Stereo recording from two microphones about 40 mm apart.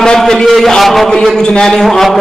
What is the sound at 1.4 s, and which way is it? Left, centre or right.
Speech, centre.